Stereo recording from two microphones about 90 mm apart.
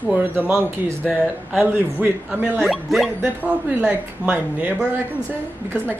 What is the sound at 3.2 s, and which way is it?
Speech, 10° right (ahead or behind).